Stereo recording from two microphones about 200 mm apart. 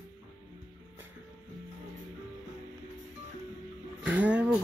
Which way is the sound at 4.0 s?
5° right (ahead or behind).